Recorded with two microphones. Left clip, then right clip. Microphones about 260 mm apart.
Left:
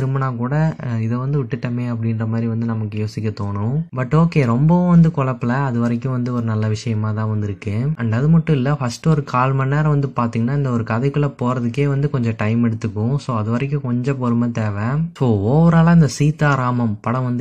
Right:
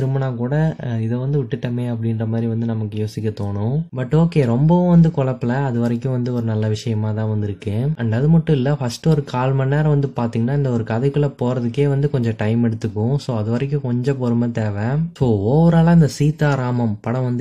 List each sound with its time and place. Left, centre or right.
0.2 s speech: centre
4.1 s speech: centre
8.0 s speech: centre
15.1 s speech: left
15.5 s speech: centre